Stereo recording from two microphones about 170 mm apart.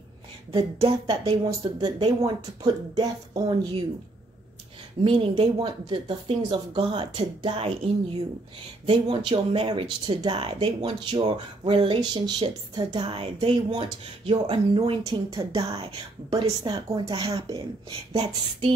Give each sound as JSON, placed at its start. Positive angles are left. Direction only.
{"t": 0.5, "sound": "speech", "side_deg": -30}
{"t": 5.0, "sound": "speech", "side_deg": -30}
{"t": 15.0, "sound": "speech", "side_deg": -20}
{"t": 18.1, "sound": "speech", "side_deg": -40}